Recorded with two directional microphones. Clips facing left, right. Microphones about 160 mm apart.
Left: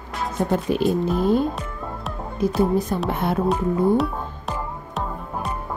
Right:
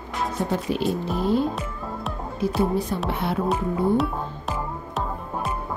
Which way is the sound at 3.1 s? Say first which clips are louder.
Left 3 dB; 45° left (ahead or behind).